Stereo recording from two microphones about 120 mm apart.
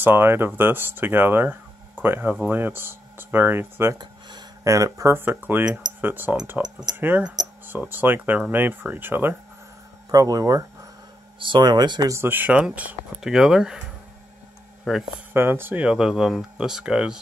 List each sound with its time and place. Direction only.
0.0 s speech: 20° right (ahead or behind)
4.0 s speech: 35° right (ahead or behind); by 9.4 s 15° right (ahead or behind)
10.1 s speech: 30° right (ahead or behind)
11.3 s speech: 40° right (ahead or behind)
12.1 s speech: 20° right (ahead or behind)
14.9 s speech: 5° right (ahead or behind)
15.3 s speech: 20° right (ahead or behind)